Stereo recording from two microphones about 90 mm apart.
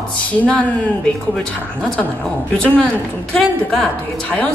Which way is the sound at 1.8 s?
10° left (ahead or behind).